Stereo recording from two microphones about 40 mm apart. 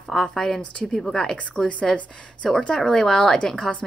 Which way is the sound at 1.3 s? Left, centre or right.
Left.